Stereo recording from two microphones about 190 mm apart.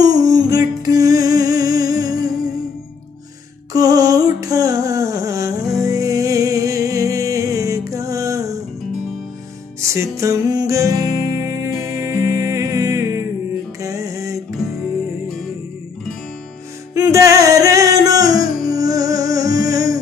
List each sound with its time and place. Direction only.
0.0 s music: 20° right (ahead or behind)
3.7 s a sound: 20° right (ahead or behind)
9.8 s music: 15° right (ahead or behind)
16.9 s music: 15° right (ahead or behind)